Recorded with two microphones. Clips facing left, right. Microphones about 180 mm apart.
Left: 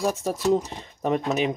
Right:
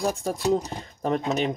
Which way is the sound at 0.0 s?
5° left (ahead or behind).